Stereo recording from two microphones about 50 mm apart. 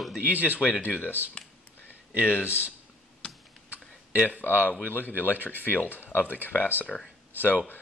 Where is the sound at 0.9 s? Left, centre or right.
Left.